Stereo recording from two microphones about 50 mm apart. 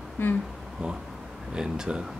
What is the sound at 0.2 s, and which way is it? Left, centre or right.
Speech, left.